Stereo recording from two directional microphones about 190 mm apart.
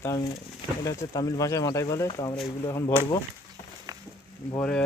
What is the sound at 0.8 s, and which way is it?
Speech, 15° left (ahead or behind).